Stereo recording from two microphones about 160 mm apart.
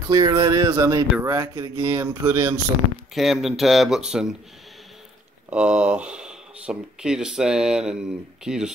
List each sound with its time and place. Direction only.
0.1 s speech: 20° right (ahead or behind)
3.2 s speech: centre (ahead or behind)
5.5 s speech: 10° right (ahead or behind)